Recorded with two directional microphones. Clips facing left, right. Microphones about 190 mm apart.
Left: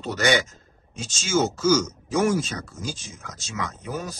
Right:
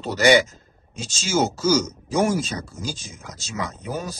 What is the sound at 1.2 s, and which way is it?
Speech, 35° right (ahead or behind).